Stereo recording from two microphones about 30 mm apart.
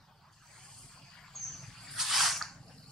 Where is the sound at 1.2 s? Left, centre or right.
Centre.